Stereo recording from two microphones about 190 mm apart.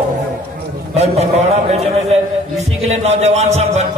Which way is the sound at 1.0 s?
35° right (ahead or behind).